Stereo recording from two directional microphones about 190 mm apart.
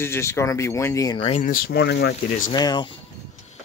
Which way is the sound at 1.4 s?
50° left (ahead or behind).